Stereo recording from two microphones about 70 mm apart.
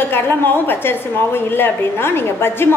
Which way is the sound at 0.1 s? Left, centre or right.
Left.